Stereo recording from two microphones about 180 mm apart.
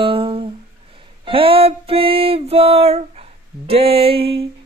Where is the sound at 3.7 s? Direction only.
30° right (ahead or behind).